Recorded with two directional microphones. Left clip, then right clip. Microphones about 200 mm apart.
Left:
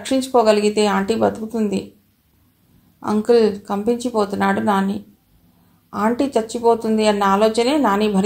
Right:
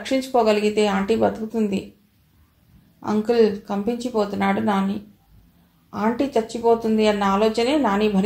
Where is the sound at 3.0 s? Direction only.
30° left (ahead or behind).